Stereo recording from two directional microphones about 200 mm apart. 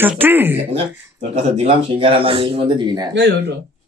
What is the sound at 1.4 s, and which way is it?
Speech, 30° right (ahead or behind).